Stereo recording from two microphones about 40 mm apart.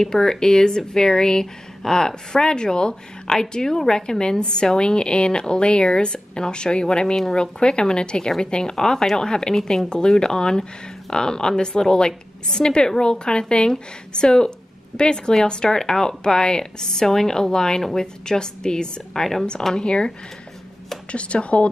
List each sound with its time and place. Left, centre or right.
0.0 s a woman's voice: centre
21.1 s speech: left